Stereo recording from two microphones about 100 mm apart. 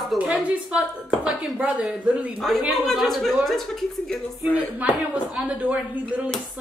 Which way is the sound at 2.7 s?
Centre (ahead or behind).